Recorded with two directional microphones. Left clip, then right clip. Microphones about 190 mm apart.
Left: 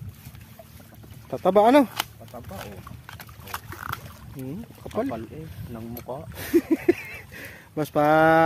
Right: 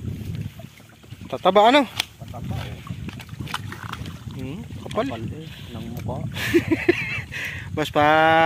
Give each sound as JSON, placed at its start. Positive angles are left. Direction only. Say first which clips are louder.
{"t": 1.3, "sound": "speech", "louder": "right 2 dB", "side_deg": 10}
{"t": 4.5, "sound": "speech", "louder": "right 2 dB", "side_deg": 5}
{"t": 5.7, "sound": "speech", "louder": "right 1 dB", "side_deg": -10}
{"t": 6.3, "sound": "speech", "louder": "right 2 dB", "side_deg": 5}